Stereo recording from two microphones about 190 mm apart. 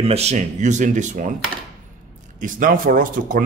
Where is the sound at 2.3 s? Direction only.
45° right (ahead or behind).